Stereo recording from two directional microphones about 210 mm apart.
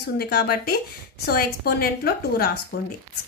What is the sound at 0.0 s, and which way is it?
A woman's voice, 50° left (ahead or behind).